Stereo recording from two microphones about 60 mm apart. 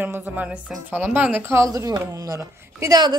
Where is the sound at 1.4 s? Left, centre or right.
Right.